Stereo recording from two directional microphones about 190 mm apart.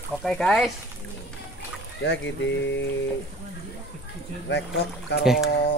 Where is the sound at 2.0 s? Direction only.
70° left (ahead or behind).